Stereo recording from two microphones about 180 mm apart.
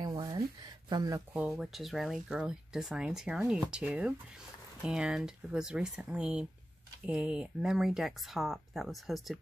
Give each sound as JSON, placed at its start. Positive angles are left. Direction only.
{"t": 0.0, "sound": "a sound", "side_deg": -20}
{"t": 0.8, "sound": "speech", "side_deg": -20}
{"t": 1.3, "sound": "speech", "side_deg": -5}